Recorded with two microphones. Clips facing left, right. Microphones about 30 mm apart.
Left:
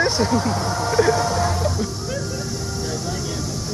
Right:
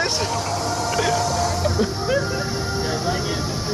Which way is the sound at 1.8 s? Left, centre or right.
Right.